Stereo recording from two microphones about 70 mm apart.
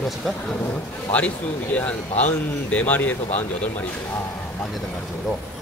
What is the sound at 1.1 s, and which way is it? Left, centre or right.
Speech, left.